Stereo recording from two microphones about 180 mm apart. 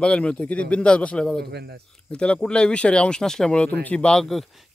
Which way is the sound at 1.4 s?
65° right (ahead or behind).